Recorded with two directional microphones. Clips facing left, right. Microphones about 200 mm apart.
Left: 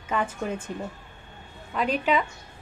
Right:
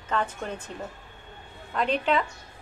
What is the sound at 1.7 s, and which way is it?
Speech, 5° left (ahead or behind).